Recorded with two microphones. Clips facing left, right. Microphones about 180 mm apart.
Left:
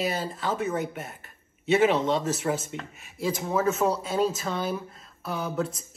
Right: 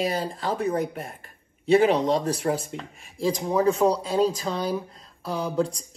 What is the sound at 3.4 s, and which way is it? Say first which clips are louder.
Speech: right 3 dB; 15° right (ahead or behind).